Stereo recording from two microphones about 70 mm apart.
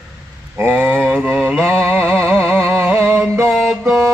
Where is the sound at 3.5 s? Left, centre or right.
Centre.